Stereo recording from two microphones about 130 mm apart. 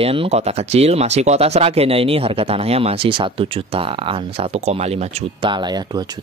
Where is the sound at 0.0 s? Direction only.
45° right (ahead or behind).